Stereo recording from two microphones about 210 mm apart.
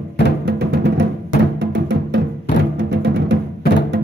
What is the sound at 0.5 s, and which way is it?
Music, 55° right (ahead or behind).